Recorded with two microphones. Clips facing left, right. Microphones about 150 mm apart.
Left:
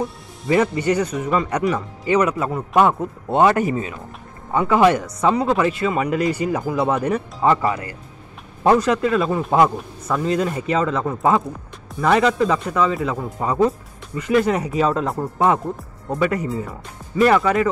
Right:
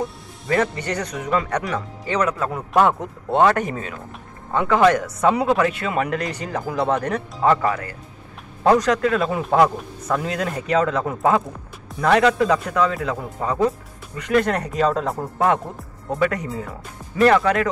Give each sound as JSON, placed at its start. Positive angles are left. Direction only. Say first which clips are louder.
{"t": 0.5, "sound": "speech", "louder": "left 4 dB", "side_deg": 10}